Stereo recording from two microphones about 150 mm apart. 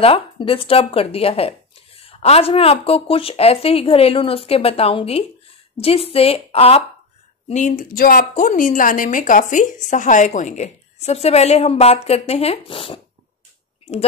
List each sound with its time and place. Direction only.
0.0 s speech: 40° left (ahead or behind)
7.4 s a woman's voice: 55° left (ahead or behind); by 13.0 s 35° left (ahead or behind)